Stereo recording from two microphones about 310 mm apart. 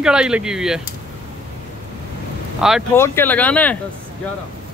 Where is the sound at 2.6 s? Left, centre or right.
Centre.